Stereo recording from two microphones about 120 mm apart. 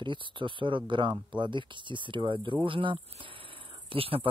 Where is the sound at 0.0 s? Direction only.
40° right (ahead or behind).